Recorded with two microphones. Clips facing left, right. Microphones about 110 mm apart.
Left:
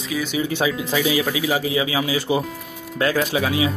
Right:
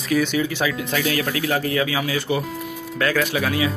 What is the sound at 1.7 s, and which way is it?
Speech, 20° left (ahead or behind).